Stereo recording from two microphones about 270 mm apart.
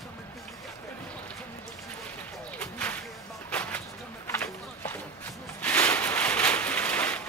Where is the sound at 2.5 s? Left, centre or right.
Centre.